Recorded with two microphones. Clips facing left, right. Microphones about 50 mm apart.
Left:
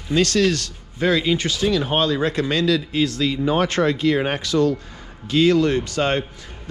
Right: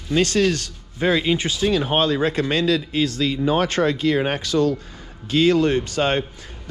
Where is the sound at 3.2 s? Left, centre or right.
Left.